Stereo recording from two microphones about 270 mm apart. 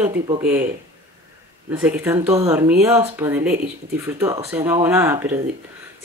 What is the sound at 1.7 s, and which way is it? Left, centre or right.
Speech, centre.